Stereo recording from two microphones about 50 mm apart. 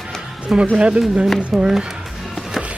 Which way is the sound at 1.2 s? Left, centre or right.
Centre.